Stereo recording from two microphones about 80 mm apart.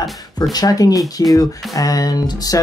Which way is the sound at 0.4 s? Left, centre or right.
Left.